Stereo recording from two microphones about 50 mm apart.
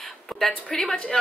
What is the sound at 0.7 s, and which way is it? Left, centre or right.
Speech, centre.